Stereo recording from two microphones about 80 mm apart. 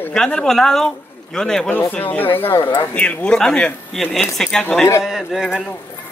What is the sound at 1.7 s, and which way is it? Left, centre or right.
Speech, centre.